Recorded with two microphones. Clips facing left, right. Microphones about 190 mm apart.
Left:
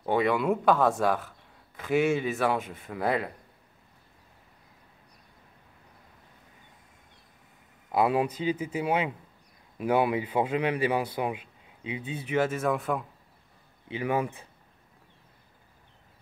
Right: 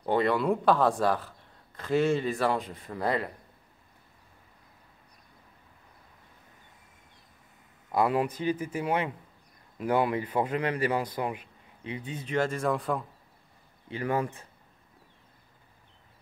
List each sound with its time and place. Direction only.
0.0 s a man's voice: 5° left (ahead or behind)
7.9 s a man's voice: 20° left (ahead or behind); by 13.0 s centre (ahead or behind)
13.8 s a man's voice: 15° left (ahead or behind)